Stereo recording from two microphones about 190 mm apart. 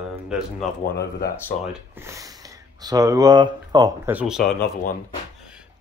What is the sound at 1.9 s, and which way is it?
Speech, 15° right (ahead or behind).